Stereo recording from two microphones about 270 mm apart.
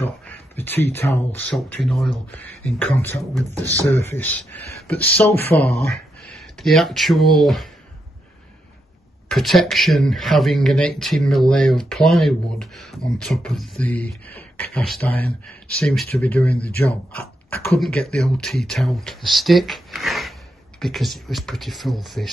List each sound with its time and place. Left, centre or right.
0.3 s a sound: centre
0.9 s speech: centre
5.5 s speech: left
6.2 s speech: centre
9.3 s speech: centre